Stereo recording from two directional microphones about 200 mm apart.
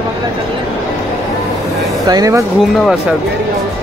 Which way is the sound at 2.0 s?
15° right (ahead or behind).